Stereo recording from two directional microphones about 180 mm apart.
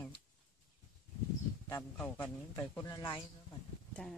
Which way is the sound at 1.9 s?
10° left (ahead or behind).